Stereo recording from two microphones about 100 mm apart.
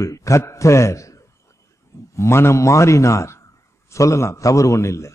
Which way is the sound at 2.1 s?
25° left (ahead or behind).